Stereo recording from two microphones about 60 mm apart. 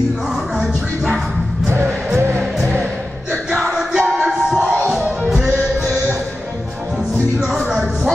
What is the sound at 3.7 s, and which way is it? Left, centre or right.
Music, centre.